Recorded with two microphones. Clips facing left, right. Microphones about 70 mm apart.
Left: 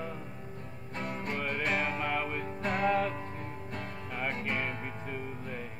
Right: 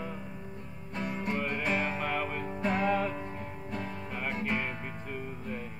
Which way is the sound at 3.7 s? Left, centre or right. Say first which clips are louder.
Right 6 dB; left.